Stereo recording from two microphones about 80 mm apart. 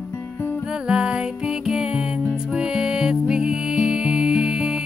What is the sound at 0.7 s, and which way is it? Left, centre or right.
Music, centre.